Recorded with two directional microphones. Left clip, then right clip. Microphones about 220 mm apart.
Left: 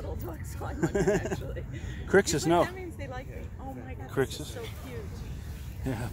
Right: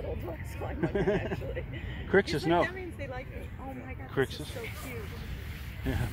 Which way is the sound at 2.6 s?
5° right (ahead or behind).